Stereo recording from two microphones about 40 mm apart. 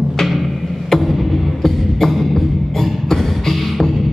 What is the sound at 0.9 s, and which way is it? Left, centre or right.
Music, centre.